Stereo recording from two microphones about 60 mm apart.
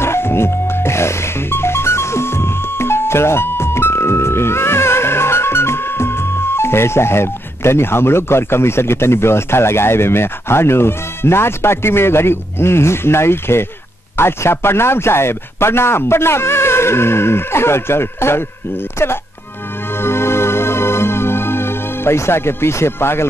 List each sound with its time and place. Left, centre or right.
0.0 s music: left
14.1 s speech: left
20.0 s music: left